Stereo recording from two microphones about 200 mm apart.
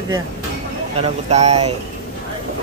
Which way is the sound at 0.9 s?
30° right (ahead or behind).